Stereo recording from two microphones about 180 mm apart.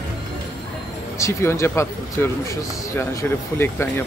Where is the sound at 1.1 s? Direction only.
15° left (ahead or behind).